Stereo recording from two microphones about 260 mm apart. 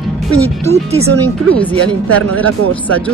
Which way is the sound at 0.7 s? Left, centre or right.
Right.